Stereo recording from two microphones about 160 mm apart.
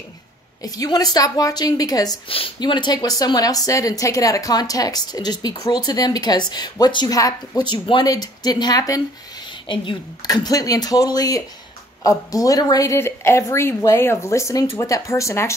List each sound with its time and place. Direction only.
0.6 s speech: 25° left (ahead or behind)